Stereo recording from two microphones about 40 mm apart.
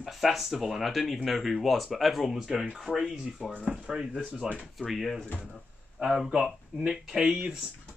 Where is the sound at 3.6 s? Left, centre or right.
Right.